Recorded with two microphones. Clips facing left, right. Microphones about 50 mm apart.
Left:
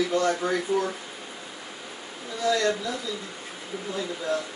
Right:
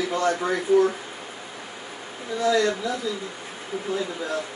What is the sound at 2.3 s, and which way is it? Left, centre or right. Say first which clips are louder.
Speech: right 3 dB; right.